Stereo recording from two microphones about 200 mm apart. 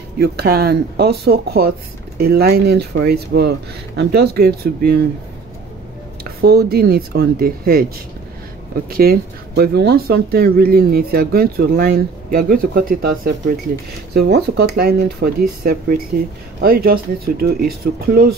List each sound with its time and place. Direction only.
0.2 s speech: 50° right (ahead or behind)
6.4 s speech: 50° right (ahead or behind)
8.9 s speech: 50° right (ahead or behind)